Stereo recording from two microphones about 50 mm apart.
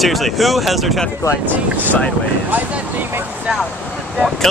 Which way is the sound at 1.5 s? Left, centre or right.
Right.